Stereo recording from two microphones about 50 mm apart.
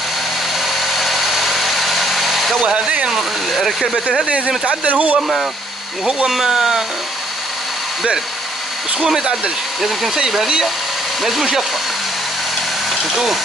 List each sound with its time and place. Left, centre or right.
0.6 s vehicle: centre
2.6 s speech: right
3.1 s speech: centre
4.3 s speech: right
6.2 s speech: centre
9.0 s speech: centre
11.2 s speech: centre
13.0 s speech: centre